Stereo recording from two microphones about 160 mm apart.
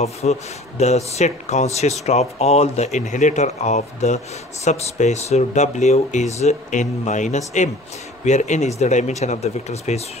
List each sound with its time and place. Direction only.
0.0 s speech: 45° left (ahead or behind)